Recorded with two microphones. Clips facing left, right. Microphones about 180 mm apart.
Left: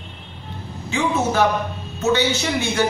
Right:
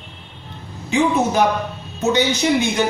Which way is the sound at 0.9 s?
15° right (ahead or behind).